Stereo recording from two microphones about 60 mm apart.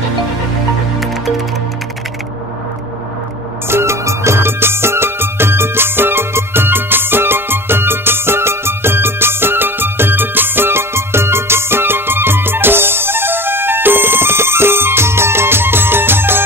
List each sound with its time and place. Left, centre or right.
3.6 s music: right